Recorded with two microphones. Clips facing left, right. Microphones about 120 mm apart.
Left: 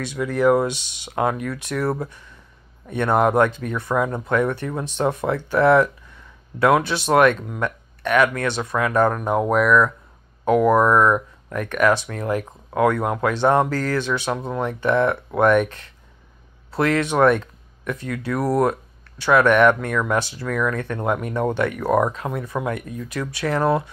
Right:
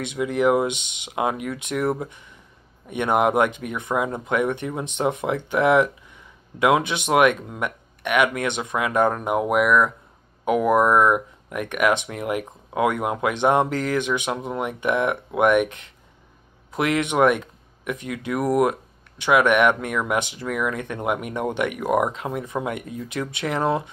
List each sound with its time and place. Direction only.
0.0 s speech: 20° right (ahead or behind)